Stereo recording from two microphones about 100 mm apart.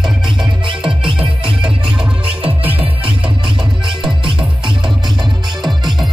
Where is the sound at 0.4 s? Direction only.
55° right (ahead or behind).